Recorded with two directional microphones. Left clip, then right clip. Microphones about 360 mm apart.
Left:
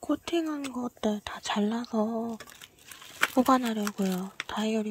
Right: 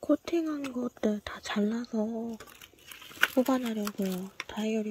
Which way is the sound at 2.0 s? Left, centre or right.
Left.